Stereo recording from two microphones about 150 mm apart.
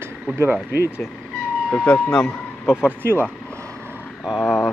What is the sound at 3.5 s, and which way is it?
Vehicle, 20° right (ahead or behind).